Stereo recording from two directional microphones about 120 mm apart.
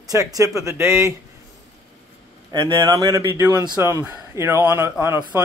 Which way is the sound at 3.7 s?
20° right (ahead or behind).